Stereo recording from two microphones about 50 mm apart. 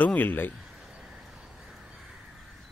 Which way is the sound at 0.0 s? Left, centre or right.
Left.